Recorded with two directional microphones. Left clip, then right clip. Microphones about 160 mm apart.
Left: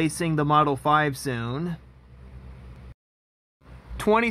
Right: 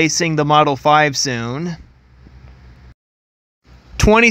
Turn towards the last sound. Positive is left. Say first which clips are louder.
# right 9 dB
turn(degrees=-30)  # may be behind; listen again after turning